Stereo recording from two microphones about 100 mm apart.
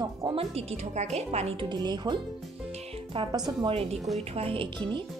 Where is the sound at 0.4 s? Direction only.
90° right.